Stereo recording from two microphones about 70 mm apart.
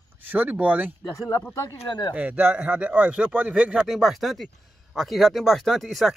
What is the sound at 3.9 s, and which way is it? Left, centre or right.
Speech, centre.